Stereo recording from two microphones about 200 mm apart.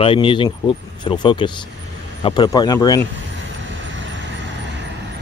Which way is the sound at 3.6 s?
65° right (ahead or behind).